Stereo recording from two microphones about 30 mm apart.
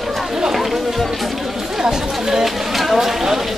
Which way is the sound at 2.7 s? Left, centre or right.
Centre.